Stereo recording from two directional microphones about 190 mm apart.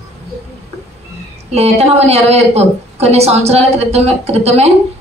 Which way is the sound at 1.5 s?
35° right (ahead or behind).